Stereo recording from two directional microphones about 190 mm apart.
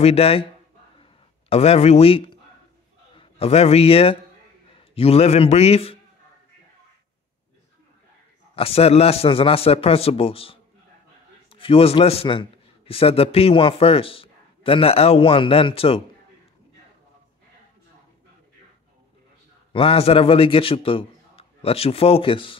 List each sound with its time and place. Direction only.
0.0 s a man's voice: 30° left (ahead or behind)
1.5 s a man's voice: 35° left (ahead or behind)
8.5 s a man's voice: 30° left (ahead or behind)
19.7 s a man's voice: 30° left (ahead or behind)